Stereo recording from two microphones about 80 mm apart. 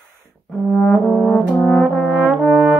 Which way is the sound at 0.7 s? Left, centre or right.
Centre.